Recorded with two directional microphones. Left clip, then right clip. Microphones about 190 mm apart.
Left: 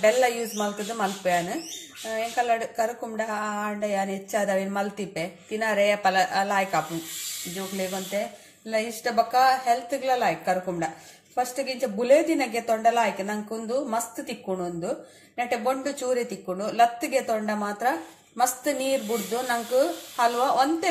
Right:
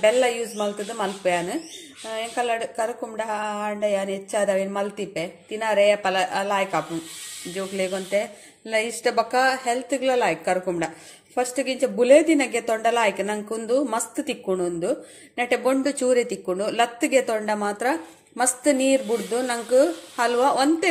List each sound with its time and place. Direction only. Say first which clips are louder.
0.0 s a woman's voice: right 2 dB; 20° right (ahead or behind)
7.5 s a woman's voice: right 6 dB; 35° right (ahead or behind)